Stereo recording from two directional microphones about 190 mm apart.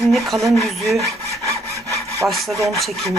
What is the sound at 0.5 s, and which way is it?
Speech, centre (ahead or behind).